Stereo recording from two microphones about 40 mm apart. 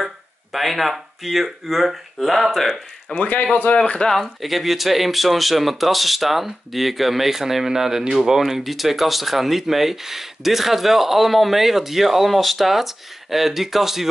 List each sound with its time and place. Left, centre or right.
0.0 s speech: centre
3.2 s speech: left
3.7 s speech: left
4.1 s speech: centre